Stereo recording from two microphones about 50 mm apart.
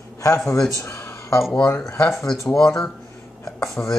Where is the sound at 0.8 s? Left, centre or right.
Left.